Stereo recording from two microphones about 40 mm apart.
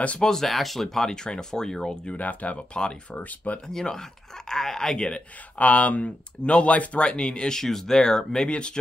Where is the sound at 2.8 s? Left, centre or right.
Left.